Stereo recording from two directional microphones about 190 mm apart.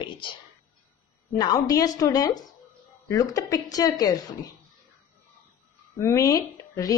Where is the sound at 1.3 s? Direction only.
20° left (ahead or behind).